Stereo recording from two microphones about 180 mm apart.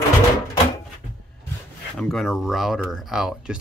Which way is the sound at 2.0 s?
Centre (ahead or behind).